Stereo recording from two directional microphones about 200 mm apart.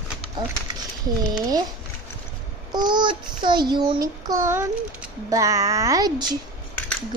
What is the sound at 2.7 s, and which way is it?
Child singing, 20° right (ahead or behind).